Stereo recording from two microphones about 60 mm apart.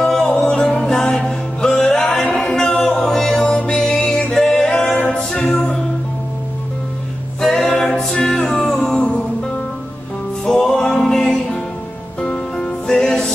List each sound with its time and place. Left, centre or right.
0.0 s music: centre
7.4 s music: centre
10.4 s music: centre